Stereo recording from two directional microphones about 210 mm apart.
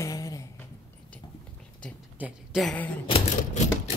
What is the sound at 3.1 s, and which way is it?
Typewriter, 30° left (ahead or behind).